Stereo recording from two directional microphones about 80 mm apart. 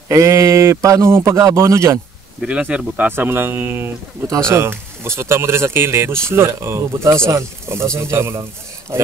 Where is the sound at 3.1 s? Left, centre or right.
Right.